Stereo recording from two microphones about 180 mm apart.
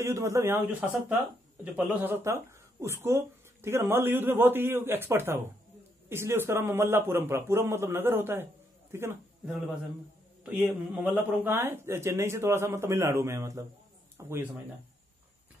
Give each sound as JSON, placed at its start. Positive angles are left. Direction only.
{"t": 0.0, "sound": "speech", "side_deg": -15}
{"t": 10.4, "sound": "speech", "side_deg": -5}